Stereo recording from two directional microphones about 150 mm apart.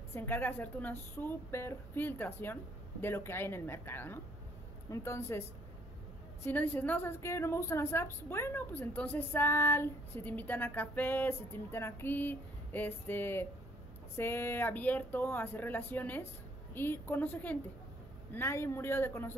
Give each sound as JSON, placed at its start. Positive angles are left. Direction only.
{"t": 0.1, "sound": "a woman's voice", "side_deg": 15}
{"t": 6.4, "sound": "a woman's voice", "side_deg": 10}